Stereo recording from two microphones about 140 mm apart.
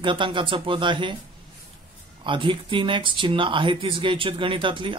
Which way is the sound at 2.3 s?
35° right (ahead or behind).